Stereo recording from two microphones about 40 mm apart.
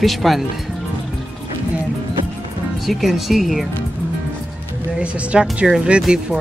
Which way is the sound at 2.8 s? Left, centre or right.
Centre.